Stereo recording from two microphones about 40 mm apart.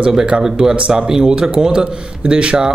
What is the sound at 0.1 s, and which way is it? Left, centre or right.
A man's voice, centre.